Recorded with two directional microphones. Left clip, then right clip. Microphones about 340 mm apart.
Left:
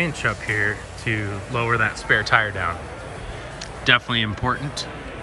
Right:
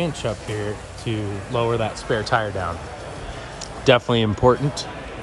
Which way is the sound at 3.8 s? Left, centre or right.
Centre.